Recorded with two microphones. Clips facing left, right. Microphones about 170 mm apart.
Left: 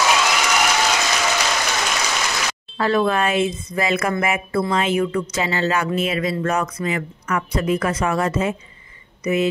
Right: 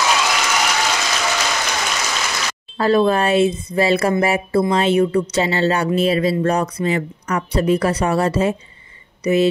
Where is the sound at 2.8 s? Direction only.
35° right (ahead or behind).